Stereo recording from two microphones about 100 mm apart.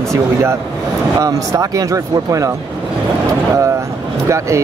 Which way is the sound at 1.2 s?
35° right (ahead or behind).